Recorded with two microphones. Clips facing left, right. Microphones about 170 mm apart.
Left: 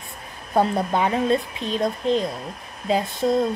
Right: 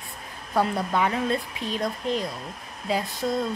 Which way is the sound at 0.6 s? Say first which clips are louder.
Left 3 dB; 25° left (ahead or behind).